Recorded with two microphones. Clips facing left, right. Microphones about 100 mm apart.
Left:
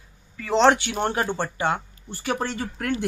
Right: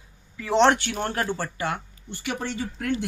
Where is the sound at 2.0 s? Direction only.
40° left (ahead or behind).